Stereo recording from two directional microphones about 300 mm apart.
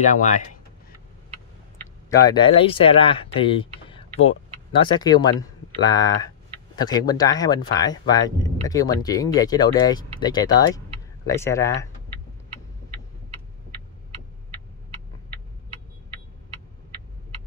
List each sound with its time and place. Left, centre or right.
0.0 s speech: left
2.0 s speech: centre